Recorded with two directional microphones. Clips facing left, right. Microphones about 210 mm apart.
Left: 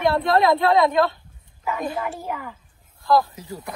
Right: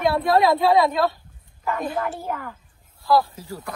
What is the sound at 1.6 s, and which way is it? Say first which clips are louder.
Speech: right 1 dB; 5° left (ahead or behind).